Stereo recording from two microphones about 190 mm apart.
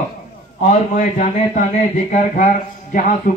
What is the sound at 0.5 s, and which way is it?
Speech, 40° left (ahead or behind).